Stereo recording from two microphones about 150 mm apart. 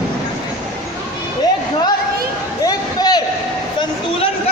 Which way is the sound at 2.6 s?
25° left (ahead or behind).